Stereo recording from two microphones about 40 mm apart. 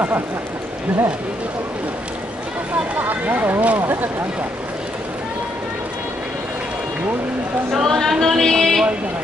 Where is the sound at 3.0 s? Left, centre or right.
Right.